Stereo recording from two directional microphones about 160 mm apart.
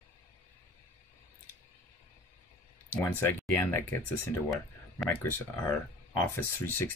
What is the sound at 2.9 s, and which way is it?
Speech, 15° left (ahead or behind).